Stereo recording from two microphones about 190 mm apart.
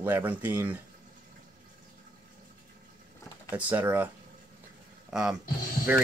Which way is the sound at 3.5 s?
10° right (ahead or behind).